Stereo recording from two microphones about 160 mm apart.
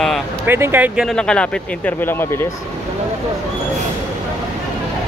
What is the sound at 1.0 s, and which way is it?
Speech, 5° left (ahead or behind).